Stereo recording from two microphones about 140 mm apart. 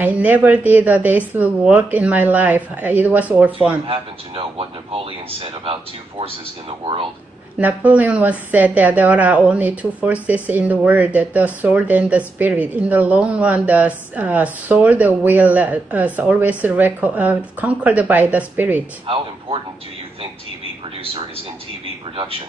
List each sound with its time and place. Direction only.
0.0 s a woman's voice: 10° right (ahead or behind)
3.8 s a man's voice: 40° right (ahead or behind)
7.5 s a woman's voice: 10° right (ahead or behind)
22.1 s a man's voice: 40° right (ahead or behind)